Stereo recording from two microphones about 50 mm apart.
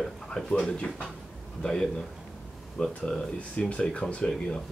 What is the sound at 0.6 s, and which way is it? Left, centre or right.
Speech, centre.